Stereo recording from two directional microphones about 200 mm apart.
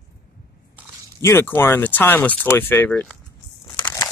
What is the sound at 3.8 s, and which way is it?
Crumpling, 10° left (ahead or behind).